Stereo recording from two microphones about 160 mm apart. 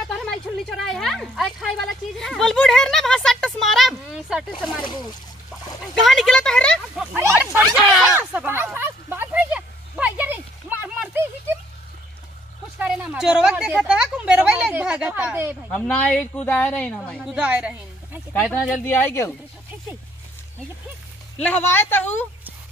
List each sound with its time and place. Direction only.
0.1 s speech: centre (ahead or behind)
7.2 s a sound: 15° right (ahead or behind)
12.7 s speech: 10° right (ahead or behind)
15.7 s speech: 10° left (ahead or behind)
17.2 s a woman's voice: 5° right (ahead or behind)
18.3 s speech: 15° left (ahead or behind)
21.4 s speech: 10° left (ahead or behind)